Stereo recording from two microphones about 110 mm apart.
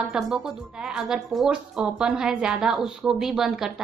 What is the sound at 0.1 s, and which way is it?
A woman's voice, 5° right (ahead or behind).